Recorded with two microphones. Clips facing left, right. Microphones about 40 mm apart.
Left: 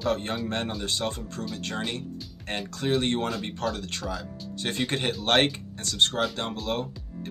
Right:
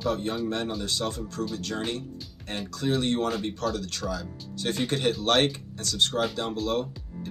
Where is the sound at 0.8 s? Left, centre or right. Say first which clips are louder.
Even; left.